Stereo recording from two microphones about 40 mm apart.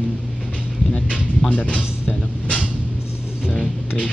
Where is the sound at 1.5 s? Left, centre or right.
Left.